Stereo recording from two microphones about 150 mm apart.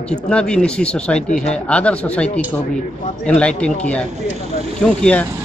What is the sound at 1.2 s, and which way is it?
Speech, 50° left (ahead or behind).